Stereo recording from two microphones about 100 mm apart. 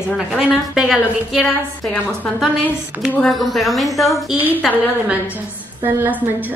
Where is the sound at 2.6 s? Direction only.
15° right (ahead or behind).